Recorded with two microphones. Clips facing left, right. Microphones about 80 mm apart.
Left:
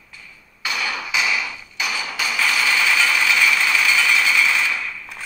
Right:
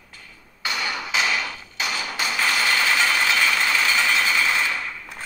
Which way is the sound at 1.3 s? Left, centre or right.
Centre.